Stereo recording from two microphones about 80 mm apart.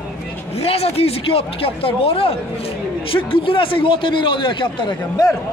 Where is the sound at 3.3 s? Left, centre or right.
Left.